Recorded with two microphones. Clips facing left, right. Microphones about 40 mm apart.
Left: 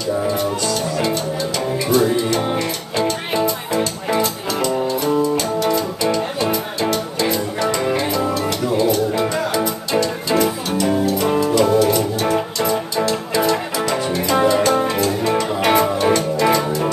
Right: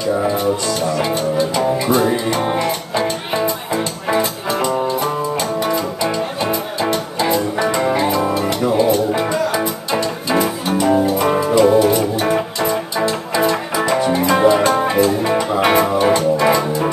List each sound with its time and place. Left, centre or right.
1.9 s music: right